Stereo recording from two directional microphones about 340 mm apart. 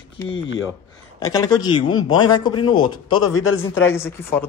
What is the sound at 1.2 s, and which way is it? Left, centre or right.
Speech, centre.